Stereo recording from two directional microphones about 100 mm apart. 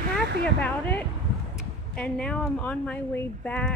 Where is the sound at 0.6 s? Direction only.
20° left (ahead or behind).